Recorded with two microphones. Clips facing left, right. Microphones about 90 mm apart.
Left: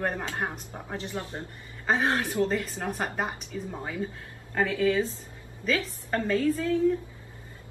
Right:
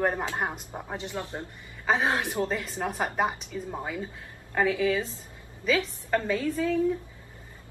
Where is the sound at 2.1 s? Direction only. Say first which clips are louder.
Even; 15° right (ahead or behind).